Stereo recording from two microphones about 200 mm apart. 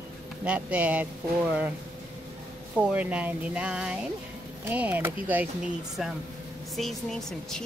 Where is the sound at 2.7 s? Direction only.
5° right (ahead or behind).